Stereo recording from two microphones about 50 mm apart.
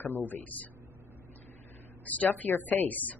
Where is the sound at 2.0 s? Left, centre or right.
Left.